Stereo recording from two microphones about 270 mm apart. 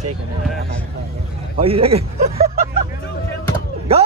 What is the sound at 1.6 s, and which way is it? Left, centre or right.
Speech, right.